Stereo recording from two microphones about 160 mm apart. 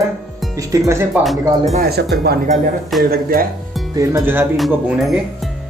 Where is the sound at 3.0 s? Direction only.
65° right (ahead or behind).